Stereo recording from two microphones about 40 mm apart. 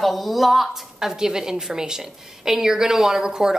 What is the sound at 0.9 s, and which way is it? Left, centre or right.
A woman's voice, centre.